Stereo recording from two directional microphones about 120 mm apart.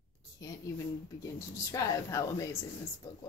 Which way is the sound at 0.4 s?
30° left (ahead or behind).